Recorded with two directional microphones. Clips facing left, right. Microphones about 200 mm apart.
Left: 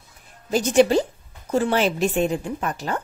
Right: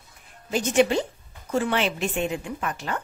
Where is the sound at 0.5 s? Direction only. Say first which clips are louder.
Left 4 dB; 40° left (ahead or behind).